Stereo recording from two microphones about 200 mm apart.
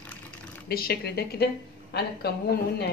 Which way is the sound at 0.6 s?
50° left (ahead or behind).